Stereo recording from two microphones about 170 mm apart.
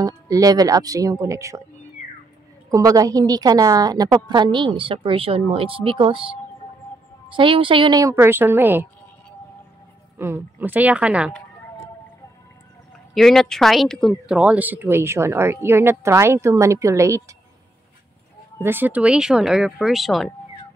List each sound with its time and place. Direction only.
0.0 s a woman's voice: 20° right (ahead or behind)
2.7 s a woman's voice: 20° right (ahead or behind)
10.1 s speech: 15° right (ahead or behind)
13.1 s speech: centre (ahead or behind); by 17.4 s 15° right (ahead or behind)
18.6 s speech: 10° right (ahead or behind)